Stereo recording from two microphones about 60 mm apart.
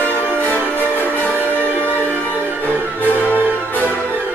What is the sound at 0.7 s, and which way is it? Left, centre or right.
Music, left.